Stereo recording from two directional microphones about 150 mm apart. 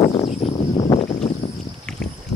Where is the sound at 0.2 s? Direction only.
40° left (ahead or behind).